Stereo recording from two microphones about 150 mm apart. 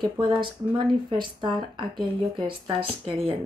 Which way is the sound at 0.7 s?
30° right (ahead or behind).